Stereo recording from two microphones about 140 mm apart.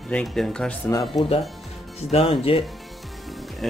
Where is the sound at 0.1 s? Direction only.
5° left (ahead or behind).